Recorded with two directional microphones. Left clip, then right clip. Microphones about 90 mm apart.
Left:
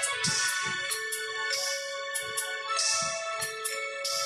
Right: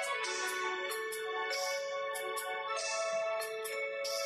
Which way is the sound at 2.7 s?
30° right (ahead or behind).